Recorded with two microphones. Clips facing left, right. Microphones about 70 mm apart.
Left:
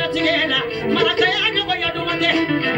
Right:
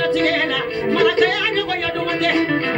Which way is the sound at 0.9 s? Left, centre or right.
Right.